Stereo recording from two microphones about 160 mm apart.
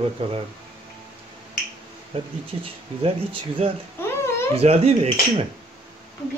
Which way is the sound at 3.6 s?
40° right (ahead or behind).